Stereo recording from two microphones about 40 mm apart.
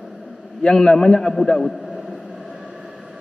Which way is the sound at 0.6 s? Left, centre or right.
Centre.